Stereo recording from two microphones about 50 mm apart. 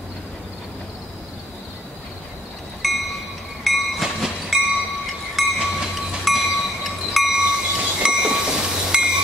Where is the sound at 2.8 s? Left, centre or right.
Centre.